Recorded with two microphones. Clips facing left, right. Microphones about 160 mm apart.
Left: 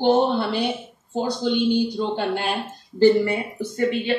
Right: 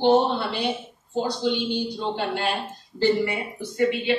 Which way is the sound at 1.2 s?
50° left (ahead or behind).